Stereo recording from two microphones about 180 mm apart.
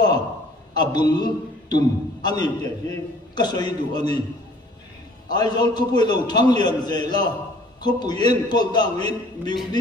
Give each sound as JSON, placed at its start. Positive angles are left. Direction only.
{"t": 0.7, "sound": "a man's voice", "side_deg": 25}
{"t": 5.3, "sound": "a man's voice", "side_deg": 25}